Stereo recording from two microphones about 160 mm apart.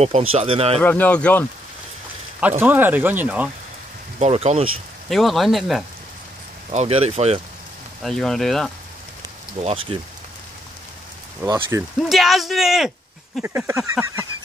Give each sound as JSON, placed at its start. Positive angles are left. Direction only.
{"t": 0.0, "sound": "speech", "side_deg": -40}
{"t": 0.7, "sound": "speech", "side_deg": 10}
{"t": 2.6, "sound": "speech", "side_deg": -10}
{"t": 4.2, "sound": "speech", "side_deg": -40}
{"t": 5.1, "sound": "speech", "side_deg": 0}
{"t": 6.7, "sound": "speech", "side_deg": -40}
{"t": 8.0, "sound": "speech", "side_deg": 0}
{"t": 9.6, "sound": "speech", "side_deg": -40}
{"t": 11.4, "sound": "speech", "side_deg": -20}
{"t": 12.0, "sound": "speech", "side_deg": 0}
{"t": 13.4, "sound": "speech", "side_deg": -15}